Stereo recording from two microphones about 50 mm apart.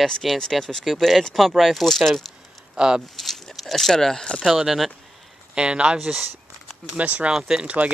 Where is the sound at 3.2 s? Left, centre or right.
Centre.